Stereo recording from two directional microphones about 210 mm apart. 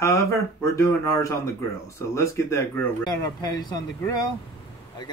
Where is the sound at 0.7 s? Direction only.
15° left (ahead or behind).